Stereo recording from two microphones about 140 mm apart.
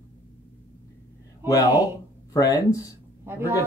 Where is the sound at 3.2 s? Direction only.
15° right (ahead or behind).